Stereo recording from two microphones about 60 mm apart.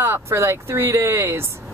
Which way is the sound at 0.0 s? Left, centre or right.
Right.